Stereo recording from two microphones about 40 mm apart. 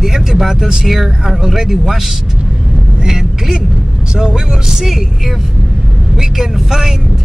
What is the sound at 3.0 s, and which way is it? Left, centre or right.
Vehicle, centre.